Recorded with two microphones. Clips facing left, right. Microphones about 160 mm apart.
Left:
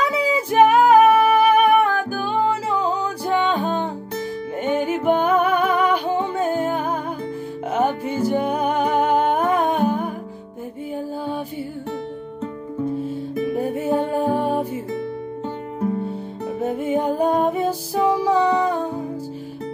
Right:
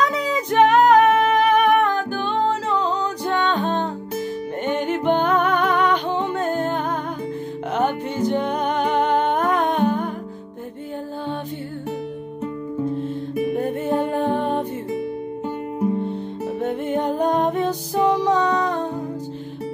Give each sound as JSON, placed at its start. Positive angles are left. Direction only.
{"t": 0.0, "sound": "music", "side_deg": 10}
{"t": 13.6, "sound": "music", "side_deg": 10}
{"t": 16.6, "sound": "music", "side_deg": 5}